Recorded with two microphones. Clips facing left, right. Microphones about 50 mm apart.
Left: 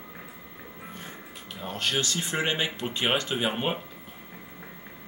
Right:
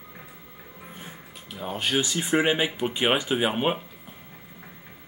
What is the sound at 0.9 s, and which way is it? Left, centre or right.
Speech, centre.